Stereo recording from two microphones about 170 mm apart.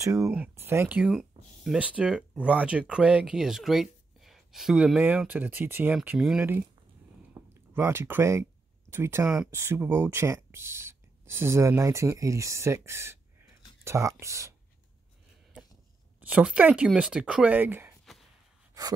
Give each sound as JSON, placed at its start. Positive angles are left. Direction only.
{"t": 0.0, "sound": "speech", "side_deg": -20}
{"t": 7.7, "sound": "speech", "side_deg": -15}
{"t": 16.2, "sound": "speech", "side_deg": -10}